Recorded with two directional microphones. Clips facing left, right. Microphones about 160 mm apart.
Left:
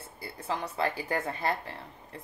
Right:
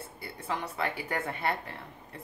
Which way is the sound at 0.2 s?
35° left (ahead or behind).